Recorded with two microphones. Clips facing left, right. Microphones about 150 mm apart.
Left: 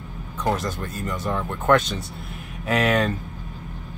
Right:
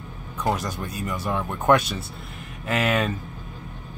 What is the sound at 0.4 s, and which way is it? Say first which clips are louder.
Speech: left 1 dB; 10° right (ahead or behind).